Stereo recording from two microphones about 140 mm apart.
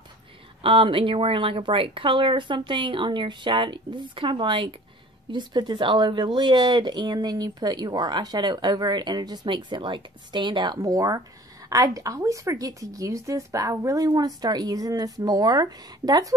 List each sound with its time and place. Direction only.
0.6 s speech: 40° right (ahead or behind)